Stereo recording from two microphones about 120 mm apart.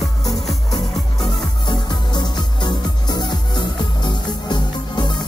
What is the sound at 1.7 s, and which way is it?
Music, 35° left (ahead or behind).